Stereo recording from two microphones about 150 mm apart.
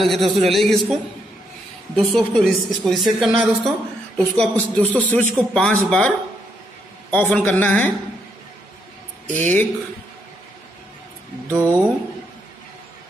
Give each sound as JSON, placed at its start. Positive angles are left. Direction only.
{"t": 0.0, "sound": "a woman's voice", "side_deg": 0}
{"t": 2.0, "sound": "a woman's voice", "side_deg": 5}
{"t": 4.2, "sound": "speech", "side_deg": 10}
{"t": 9.3, "sound": "speech", "side_deg": 10}
{"t": 11.5, "sound": "speech", "side_deg": -20}